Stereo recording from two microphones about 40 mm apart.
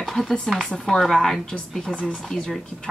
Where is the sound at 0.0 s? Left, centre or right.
Centre.